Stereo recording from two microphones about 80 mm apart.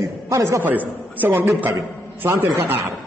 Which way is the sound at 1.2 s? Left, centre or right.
Right.